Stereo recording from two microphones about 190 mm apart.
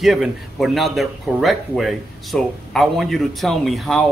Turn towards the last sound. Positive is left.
turn(degrees=0)  # may be behind; listen again after turning